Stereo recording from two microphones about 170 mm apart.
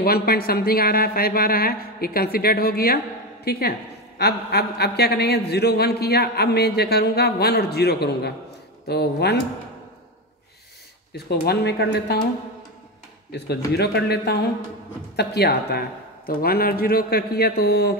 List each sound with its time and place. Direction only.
0.0 s a woman's voice: 65° left (ahead or behind)
11.2 s a man's voice: 75° left (ahead or behind)
13.3 s a man's voice: 75° left (ahead or behind)
16.3 s a woman's voice: 60° left (ahead or behind)